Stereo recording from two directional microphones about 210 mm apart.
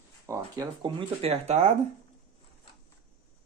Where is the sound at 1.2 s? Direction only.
30° right (ahead or behind).